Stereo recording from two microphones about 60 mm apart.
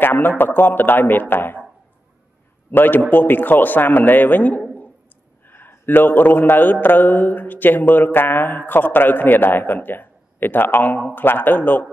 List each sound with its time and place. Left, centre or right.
0.0 s a man's voice: left
2.7 s speech: left